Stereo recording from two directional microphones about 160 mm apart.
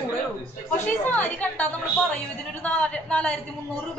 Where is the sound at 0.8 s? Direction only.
10° left (ahead or behind).